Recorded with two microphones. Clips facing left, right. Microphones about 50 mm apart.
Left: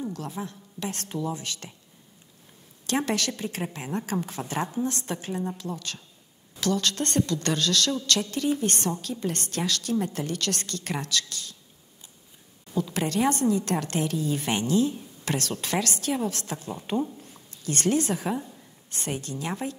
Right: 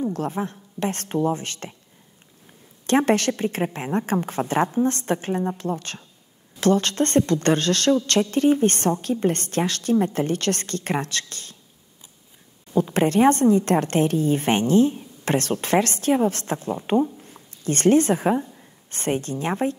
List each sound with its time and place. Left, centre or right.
0.1 s a woman's voice: right
2.9 s a woman's voice: right
12.7 s a woman's voice: right